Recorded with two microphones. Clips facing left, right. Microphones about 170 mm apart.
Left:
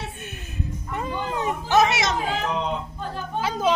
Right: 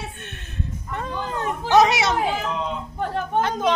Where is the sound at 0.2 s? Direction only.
5° left (ahead or behind).